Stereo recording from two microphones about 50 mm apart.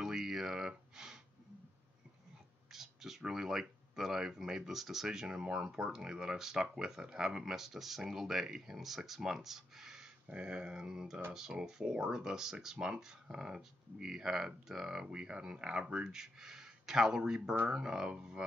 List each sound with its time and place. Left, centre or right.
0.0 s a sound: centre
2.7 s speech: centre
10.2 s speech: right
12.7 s speech: right